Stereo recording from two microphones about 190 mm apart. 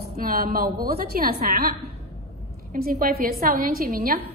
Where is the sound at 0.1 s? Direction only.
50° right (ahead or behind).